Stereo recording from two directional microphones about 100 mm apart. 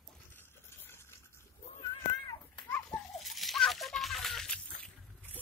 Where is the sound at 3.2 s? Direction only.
Centre (ahead or behind).